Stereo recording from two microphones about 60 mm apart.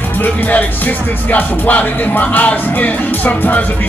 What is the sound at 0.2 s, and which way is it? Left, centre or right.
Music, left.